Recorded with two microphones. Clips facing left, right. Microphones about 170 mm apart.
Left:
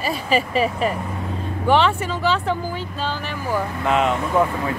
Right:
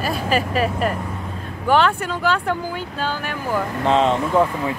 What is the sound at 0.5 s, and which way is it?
Speech, centre (ahead or behind).